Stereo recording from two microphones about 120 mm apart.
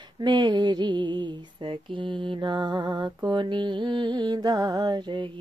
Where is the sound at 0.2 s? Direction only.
40° right (ahead or behind).